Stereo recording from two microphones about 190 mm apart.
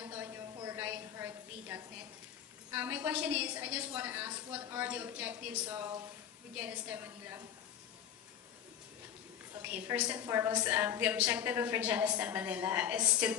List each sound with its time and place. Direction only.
0.6 s a sound: 15° right (ahead or behind)
2.7 s a woman's voice: 10° right (ahead or behind)
9.6 s a woman's voice: 10° right (ahead or behind)